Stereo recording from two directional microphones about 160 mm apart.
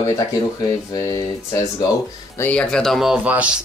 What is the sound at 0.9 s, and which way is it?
Speech, 20° left (ahead or behind).